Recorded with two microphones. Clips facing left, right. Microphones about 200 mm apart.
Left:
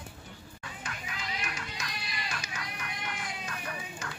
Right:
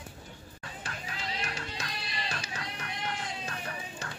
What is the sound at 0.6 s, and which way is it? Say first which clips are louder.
Music: right 1 dB; 35° right (ahead or behind).